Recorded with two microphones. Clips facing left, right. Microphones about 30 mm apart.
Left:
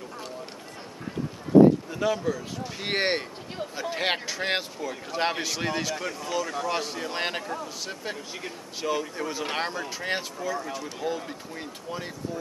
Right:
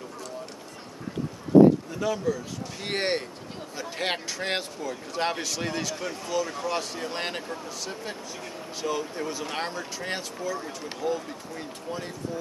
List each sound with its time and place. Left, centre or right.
1.9 s a man's voice: centre
6.7 s a man's voice: centre